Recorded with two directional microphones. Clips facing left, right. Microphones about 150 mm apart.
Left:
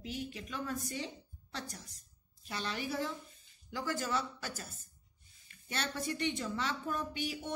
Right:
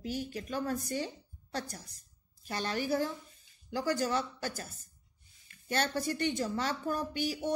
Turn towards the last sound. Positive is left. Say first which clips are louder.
# right 4 dB
turn(degrees=-40)  # may be behind; listen again after turning